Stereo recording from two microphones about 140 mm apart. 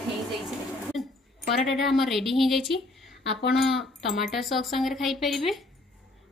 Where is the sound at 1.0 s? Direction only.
Centre (ahead or behind).